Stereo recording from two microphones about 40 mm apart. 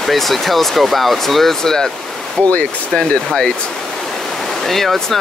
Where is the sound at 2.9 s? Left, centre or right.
Left.